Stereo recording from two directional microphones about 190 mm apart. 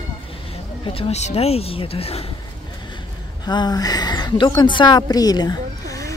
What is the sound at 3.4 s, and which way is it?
A woman's voice, 20° left (ahead or behind).